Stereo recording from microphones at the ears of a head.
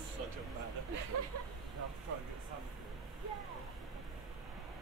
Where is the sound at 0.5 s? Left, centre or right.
Right.